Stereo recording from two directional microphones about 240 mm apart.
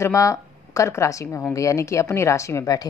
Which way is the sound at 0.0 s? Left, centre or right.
Centre.